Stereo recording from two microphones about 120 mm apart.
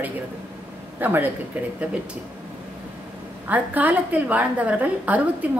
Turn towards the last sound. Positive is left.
turn(degrees=-10)  # may be behind; listen again after turning